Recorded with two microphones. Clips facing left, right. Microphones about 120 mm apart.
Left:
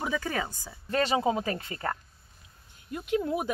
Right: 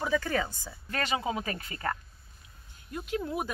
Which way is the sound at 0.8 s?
30° left (ahead or behind).